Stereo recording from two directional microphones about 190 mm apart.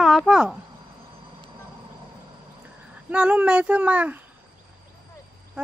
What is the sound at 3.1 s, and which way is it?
Speech, 5° right (ahead or behind).